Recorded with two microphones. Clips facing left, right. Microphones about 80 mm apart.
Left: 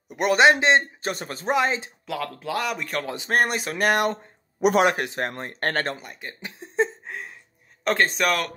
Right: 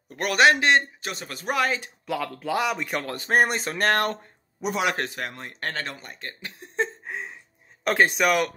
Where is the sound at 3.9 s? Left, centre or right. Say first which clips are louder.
Left 2 dB; centre.